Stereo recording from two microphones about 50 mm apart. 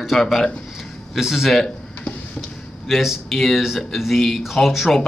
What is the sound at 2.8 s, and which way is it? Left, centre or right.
A man's voice, centre.